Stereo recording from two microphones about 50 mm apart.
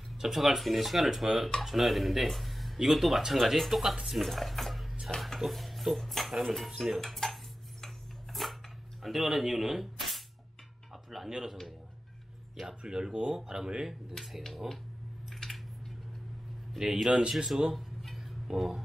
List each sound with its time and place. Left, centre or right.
0.2 s speech: centre
3.9 s speech: centre
4.2 s speech: centre
7.8 s rub: centre
9.0 s speech: centre
12.8 s speech: centre
14.1 s speech: centre
15.2 s a sound: centre
16.7 s speech: centre
17.7 s a sound: centre